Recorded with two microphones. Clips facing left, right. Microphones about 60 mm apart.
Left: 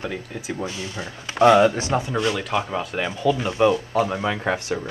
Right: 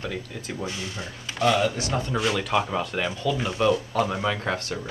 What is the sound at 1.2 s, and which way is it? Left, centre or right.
Speech, left.